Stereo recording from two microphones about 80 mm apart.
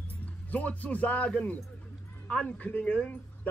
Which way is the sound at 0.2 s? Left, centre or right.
Centre.